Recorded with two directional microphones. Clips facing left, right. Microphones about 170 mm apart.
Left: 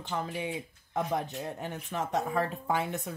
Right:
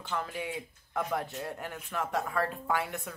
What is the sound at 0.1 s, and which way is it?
Speech, 20° left (ahead or behind).